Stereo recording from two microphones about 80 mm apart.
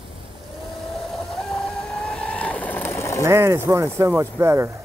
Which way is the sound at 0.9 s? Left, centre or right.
Centre.